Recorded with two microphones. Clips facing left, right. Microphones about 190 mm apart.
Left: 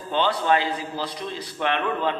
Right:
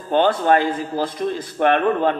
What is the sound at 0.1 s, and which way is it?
A man's voice, 50° right (ahead or behind).